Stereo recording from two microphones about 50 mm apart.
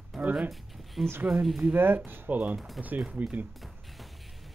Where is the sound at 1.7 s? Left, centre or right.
Right.